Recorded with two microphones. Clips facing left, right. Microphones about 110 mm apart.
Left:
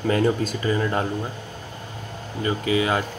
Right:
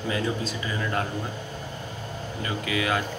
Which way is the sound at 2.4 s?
30° left (ahead or behind).